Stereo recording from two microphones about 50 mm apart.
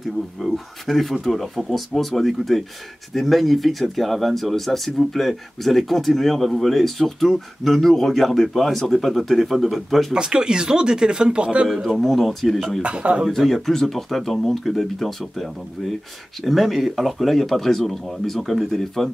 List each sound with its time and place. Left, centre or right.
0.4 s speech: centre
10.1 s speech: centre
11.8 s speech: centre
12.8 s speech: right
13.3 s speech: centre